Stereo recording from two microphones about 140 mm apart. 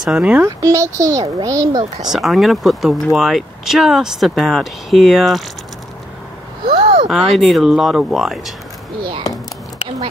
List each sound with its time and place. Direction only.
0.0 s speech: 5° right (ahead or behind)
0.5 s speech: 20° right (ahead or behind)
2.0 s speech: centre (ahead or behind)
6.8 s a sound: 50° right (ahead or behind)
7.1 s speech: centre (ahead or behind)